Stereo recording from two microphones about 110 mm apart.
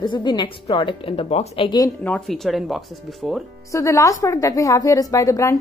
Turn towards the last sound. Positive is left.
turn(degrees=30)  # may be behind; listen again after turning